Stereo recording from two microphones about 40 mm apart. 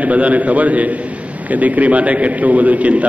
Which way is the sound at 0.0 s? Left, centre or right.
Right.